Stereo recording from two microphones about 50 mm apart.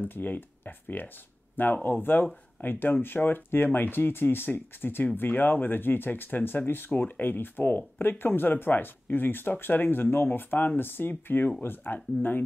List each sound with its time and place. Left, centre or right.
0.0 s speech: left
4.5 s speech: left